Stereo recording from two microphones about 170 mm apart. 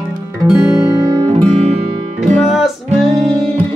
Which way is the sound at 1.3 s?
35° right (ahead or behind).